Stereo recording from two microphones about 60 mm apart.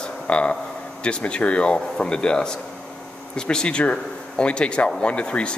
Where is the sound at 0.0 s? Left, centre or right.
Centre.